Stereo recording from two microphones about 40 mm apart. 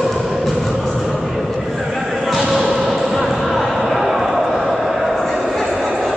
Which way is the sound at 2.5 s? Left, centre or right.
Centre.